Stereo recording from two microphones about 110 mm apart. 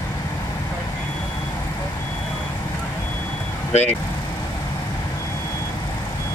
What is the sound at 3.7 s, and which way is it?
Speech, 90° left.